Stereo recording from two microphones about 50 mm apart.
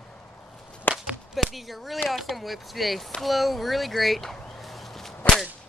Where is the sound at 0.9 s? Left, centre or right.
Left.